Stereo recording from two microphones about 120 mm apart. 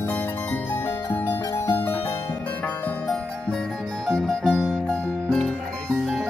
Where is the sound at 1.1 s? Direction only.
20° left (ahead or behind).